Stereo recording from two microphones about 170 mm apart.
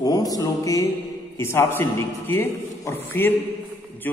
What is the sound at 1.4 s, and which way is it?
A man's voice, 15° left (ahead or behind).